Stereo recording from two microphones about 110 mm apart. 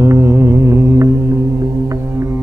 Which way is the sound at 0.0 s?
25° right (ahead or behind).